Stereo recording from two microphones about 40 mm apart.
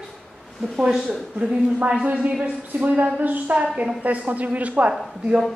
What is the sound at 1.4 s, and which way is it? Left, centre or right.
A woman's voice, right.